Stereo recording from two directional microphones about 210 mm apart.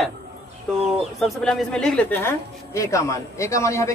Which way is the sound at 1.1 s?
Centre (ahead or behind).